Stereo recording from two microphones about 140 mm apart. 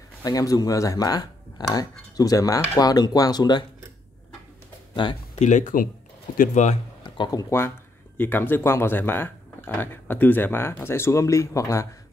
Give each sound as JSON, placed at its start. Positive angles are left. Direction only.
{"t": 0.2, "sound": "speech", "side_deg": 25}
{"t": 5.0, "sound": "speech", "side_deg": 35}
{"t": 5.4, "sound": "speech", "side_deg": 60}
{"t": 7.2, "sound": "speech", "side_deg": 25}